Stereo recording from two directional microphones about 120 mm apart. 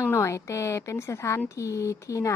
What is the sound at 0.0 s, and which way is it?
Speech, 20° left (ahead or behind).